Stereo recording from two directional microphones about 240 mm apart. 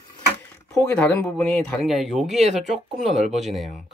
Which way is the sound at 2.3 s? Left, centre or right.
Right.